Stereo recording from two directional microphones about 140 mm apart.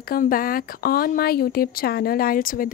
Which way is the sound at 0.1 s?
90° left.